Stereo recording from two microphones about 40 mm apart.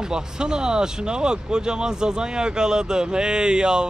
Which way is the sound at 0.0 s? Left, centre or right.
Centre.